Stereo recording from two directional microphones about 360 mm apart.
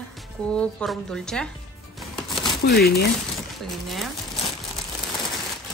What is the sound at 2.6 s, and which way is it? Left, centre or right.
Speech, left.